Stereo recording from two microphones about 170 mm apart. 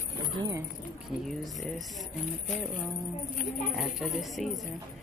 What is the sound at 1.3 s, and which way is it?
Speech, centre (ahead or behind).